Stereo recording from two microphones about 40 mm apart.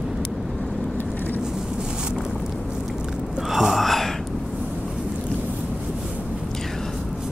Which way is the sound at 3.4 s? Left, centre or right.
Centre.